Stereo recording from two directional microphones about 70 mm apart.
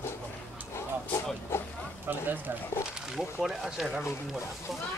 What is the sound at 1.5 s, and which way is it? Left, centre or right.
Music, left.